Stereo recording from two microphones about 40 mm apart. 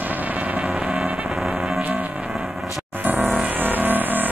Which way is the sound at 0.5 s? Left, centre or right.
Right.